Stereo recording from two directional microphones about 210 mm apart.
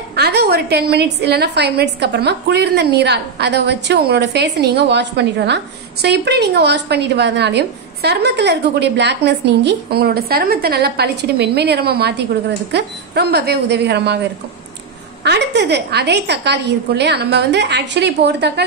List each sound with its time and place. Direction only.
0.1 s a woman's voice: 50° right (ahead or behind)
15.2 s a woman's voice: 55° right (ahead or behind)